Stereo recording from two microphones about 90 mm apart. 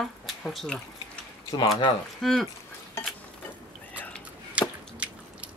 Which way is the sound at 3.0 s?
30° left (ahead or behind).